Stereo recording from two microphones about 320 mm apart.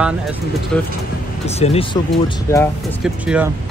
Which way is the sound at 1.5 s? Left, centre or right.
Centre.